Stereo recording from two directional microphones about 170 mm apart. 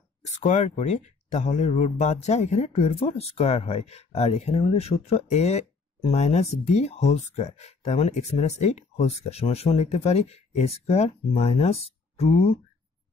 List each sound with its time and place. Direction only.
0.2 s speech: 40° left (ahead or behind)